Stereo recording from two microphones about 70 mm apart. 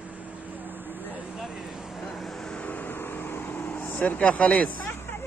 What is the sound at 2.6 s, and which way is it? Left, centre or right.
Vehicle, left.